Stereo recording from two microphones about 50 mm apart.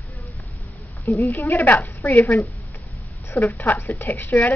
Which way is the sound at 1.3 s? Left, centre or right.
Left.